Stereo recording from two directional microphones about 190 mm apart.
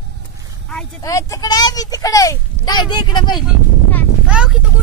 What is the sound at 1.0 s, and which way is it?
Speech, 20° left (ahead or behind).